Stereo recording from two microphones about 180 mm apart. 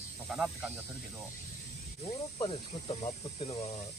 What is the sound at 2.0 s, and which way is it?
Speech, 30° left (ahead or behind).